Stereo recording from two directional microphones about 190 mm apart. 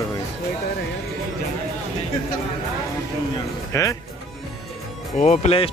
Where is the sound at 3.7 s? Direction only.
15° left (ahead or behind).